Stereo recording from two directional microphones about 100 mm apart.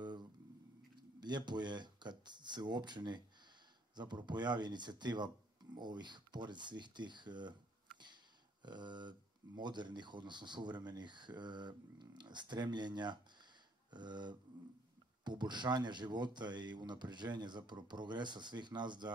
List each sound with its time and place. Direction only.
0.0 s a sound: 45° right (ahead or behind)
1.2 s speech: 45° right (ahead or behind)
8.6 s speech: 50° right (ahead or behind)